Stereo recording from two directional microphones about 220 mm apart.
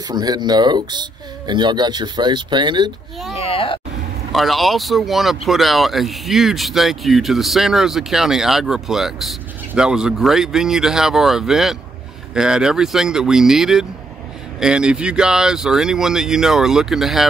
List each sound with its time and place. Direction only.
0.1 s speech: 20° right (ahead or behind)
3.3 s a sound: 25° left (ahead or behind)
4.3 s speech: centre (ahead or behind)